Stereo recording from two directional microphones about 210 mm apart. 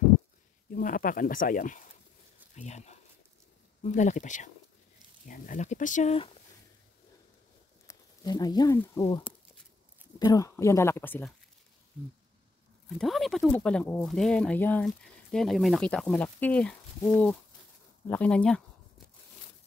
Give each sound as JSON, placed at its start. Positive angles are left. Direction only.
{"t": 0.7, "sound": "speech", "side_deg": 40}
{"t": 7.8, "sound": "speech", "side_deg": 15}
{"t": 13.0, "sound": "speech", "side_deg": 0}